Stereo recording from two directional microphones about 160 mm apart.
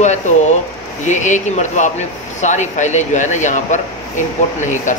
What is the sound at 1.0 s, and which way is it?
Speech, 50° left (ahead or behind).